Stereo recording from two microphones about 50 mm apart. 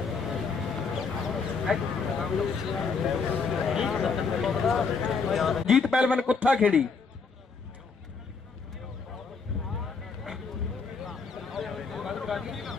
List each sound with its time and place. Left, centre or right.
0.3 s duck: centre
3.4 s a man's voice: centre
5.9 s a man's voice: right
11.0 s a sound: centre